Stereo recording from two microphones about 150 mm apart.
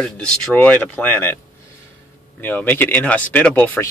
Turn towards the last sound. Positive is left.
turn(degrees=10)  # may be behind; listen again after turning